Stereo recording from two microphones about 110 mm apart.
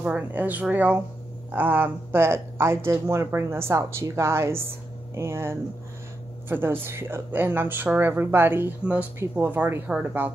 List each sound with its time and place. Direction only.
0.0 s speech: 15° right (ahead or behind)